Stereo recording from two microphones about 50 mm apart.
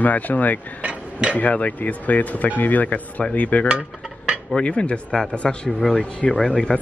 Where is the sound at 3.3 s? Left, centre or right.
Left.